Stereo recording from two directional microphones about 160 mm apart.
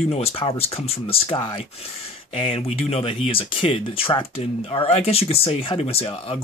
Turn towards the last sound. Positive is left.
turn(degrees=35)  # may be behind; listen again after turning